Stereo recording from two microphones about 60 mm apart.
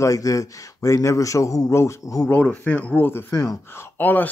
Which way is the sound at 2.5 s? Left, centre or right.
Left.